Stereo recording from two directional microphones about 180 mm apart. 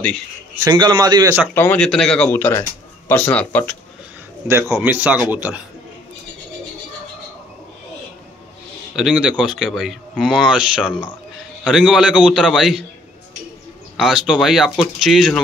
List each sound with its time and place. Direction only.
0.6 s a man's voice: 25° right (ahead or behind)
1.5 s speech: 10° left (ahead or behind)
4.7 s speech: 10° right (ahead or behind)
8.9 s speech: 5° right (ahead or behind)
13.9 s speech: 5° right (ahead or behind)